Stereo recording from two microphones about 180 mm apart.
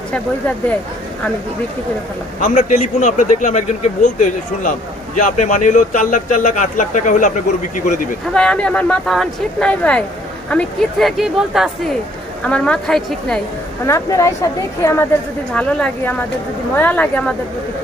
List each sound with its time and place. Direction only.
2.4 s a man's voice: 40° left (ahead or behind)
8.3 s speech: 5° left (ahead or behind)
13.8 s a woman's voice: 15° left (ahead or behind)
15.5 s a woman's voice: 5° left (ahead or behind)